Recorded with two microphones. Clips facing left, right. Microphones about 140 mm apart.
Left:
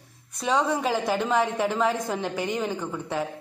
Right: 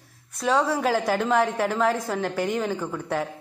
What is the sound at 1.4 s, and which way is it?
A woman's voice, 10° left (ahead or behind).